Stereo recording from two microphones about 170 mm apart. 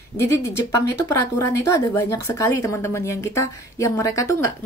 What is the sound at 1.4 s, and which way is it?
Speech, 20° left (ahead or behind).